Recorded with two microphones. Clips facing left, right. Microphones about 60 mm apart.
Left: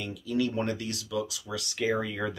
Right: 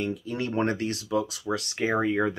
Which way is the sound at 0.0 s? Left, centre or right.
Right.